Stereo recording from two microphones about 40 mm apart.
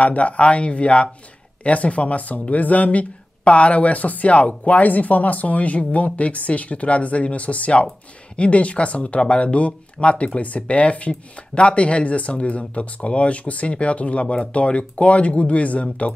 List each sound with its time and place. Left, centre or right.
0.0 s speech: left